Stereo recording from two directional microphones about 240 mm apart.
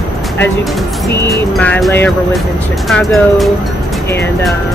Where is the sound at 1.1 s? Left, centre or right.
Centre.